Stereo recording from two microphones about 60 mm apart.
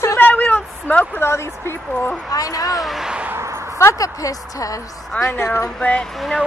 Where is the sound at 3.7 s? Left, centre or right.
Left.